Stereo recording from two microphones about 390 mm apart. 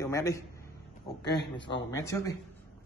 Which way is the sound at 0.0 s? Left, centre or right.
Centre.